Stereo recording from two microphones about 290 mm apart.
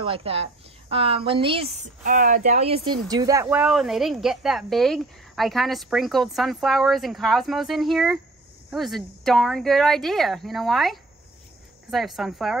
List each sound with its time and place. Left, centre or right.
0.0 s a woman's voice: centre